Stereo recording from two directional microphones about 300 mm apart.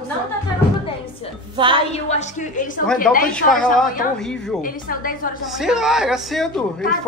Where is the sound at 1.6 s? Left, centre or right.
Centre.